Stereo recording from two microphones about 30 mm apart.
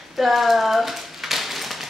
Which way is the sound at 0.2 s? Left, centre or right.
Centre.